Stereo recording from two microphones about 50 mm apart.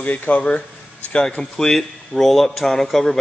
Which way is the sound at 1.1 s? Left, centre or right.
Centre.